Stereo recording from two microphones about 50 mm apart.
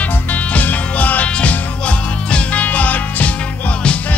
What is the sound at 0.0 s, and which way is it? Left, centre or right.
Music, left.